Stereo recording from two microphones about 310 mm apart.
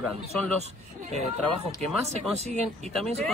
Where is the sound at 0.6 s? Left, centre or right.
Right.